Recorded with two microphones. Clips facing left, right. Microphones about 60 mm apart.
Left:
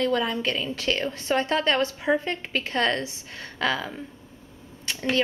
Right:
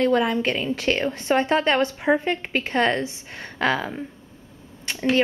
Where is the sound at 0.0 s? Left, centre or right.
Right.